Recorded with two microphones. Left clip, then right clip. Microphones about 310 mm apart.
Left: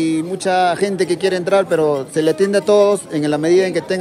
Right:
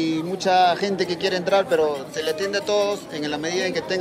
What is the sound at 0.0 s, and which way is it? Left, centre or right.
Speech, centre.